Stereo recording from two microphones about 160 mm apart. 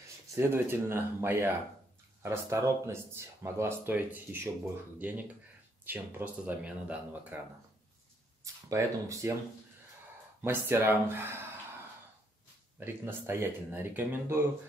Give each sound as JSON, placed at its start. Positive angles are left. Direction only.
{"t": 0.3, "sound": "speech", "side_deg": -15}
{"t": 8.6, "sound": "speech", "side_deg": -20}
{"t": 10.4, "sound": "speech", "side_deg": -15}
{"t": 12.7, "sound": "speech", "side_deg": -15}